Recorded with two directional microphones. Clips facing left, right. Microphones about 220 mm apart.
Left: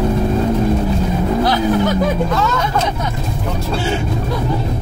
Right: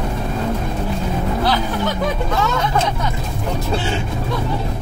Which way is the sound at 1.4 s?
15° left (ahead or behind).